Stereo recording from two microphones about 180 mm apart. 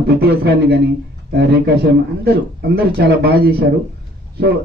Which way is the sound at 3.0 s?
60° right (ahead or behind).